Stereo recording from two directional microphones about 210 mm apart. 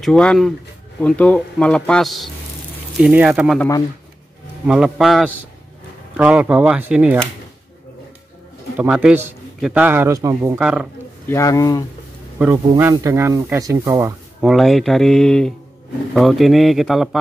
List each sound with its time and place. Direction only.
0.0 s speech: 5° left (ahead or behind)
4.6 s speech: centre (ahead or behind)
8.7 s a man's voice: 5° right (ahead or behind)
11.2 s speech: 15° left (ahead or behind)
12.7 s a man's voice: 15° right (ahead or behind)
14.4 s speech: centre (ahead or behind)